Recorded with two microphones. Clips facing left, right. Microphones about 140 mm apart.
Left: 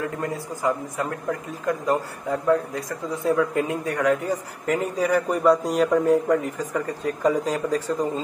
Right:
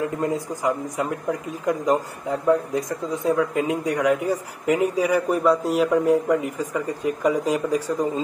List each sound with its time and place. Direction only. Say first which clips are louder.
0.0 s a man's voice: right 4 dB; 20° right (ahead or behind)
2.4 s a man's voice: right 2 dB; 20° right (ahead or behind)